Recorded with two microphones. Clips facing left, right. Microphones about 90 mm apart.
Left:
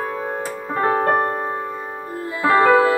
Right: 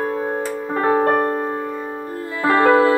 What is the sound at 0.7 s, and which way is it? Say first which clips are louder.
Music: right 1 dB; 30° left (ahead or behind).